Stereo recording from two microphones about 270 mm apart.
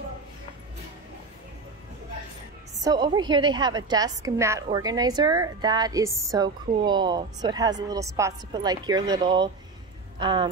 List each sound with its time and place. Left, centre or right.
2.8 s a woman's voice: centre